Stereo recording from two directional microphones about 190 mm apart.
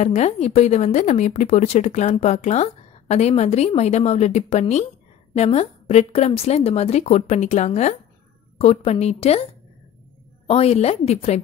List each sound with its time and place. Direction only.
0.0 s speech: 35° left (ahead or behind)